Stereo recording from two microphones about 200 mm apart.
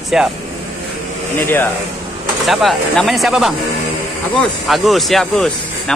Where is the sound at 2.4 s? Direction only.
Centre (ahead or behind).